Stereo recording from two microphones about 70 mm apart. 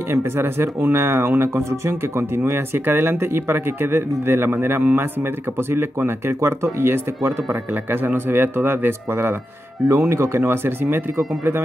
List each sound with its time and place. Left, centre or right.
0.1 s speech: right